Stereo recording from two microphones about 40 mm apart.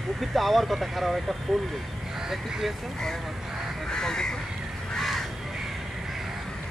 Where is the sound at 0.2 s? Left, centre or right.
Centre.